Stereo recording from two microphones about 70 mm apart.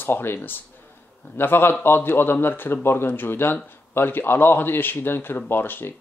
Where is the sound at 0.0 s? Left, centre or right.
Left.